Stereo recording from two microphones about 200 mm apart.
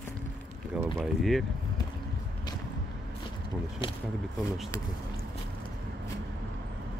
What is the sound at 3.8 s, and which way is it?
Speech, 25° left (ahead or behind).